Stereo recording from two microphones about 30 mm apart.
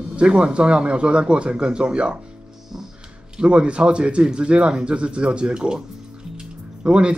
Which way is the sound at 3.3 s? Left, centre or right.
Right.